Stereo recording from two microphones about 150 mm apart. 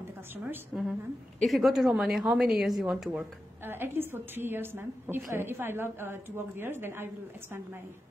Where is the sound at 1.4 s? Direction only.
Centre (ahead or behind).